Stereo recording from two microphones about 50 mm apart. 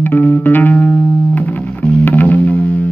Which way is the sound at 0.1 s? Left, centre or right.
Left.